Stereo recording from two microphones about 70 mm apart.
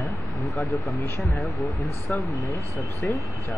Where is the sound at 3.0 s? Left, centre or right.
Left.